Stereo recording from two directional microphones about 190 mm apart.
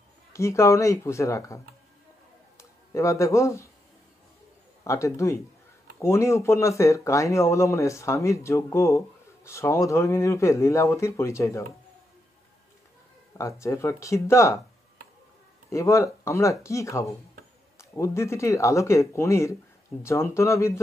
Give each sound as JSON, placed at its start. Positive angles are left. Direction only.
{"t": 0.3, "sound": "speech", "side_deg": 15}
{"t": 2.5, "sound": "a sound", "side_deg": 15}
{"t": 4.8, "sound": "speech", "side_deg": 15}
{"t": 13.4, "sound": "speech", "side_deg": 15}
{"t": 15.7, "sound": "speech", "side_deg": 15}